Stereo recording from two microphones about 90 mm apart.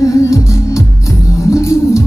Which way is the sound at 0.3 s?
35° left (ahead or behind).